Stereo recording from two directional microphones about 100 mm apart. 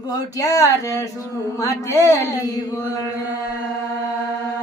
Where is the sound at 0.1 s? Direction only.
35° left (ahead or behind).